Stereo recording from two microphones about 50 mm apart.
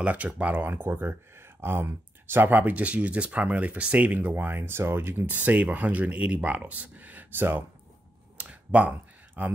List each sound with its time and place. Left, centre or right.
0.0 s speech: right
0.7 s speech: right
2.5 s speech: right
5.3 s speech: right
8.4 s a sound: right